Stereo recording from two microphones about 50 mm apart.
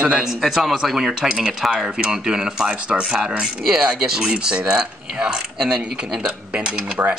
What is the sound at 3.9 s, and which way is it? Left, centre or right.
Dishes, centre.